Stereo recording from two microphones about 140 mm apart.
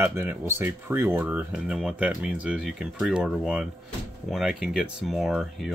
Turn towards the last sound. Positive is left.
turn(degrees=0)  # may be behind; listen again after turning